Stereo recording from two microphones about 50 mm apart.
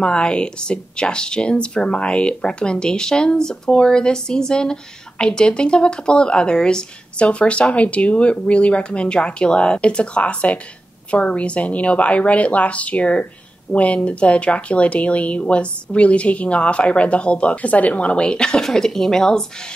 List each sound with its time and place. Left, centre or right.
0.0 s speech: centre